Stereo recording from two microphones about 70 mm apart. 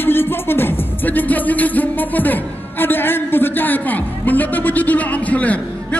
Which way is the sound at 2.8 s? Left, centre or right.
Left.